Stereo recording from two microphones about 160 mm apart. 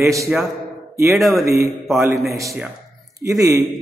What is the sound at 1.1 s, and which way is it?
Mantra, centre (ahead or behind).